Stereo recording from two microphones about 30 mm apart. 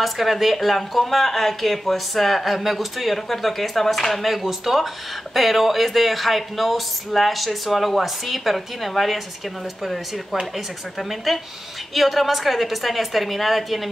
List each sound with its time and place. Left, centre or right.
0.0 s speech: centre
10.5 s speech: centre